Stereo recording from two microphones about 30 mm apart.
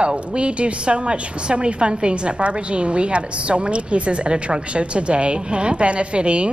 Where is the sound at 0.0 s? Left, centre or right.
Right.